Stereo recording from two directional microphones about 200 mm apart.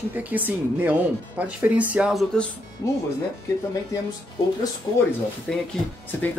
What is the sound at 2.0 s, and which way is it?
Speech, centre (ahead or behind).